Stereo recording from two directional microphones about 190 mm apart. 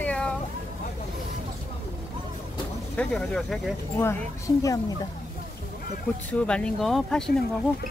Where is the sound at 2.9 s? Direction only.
5° left (ahead or behind).